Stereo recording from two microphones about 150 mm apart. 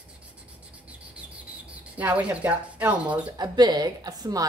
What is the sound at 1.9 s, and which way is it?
Speech, 10° right (ahead or behind).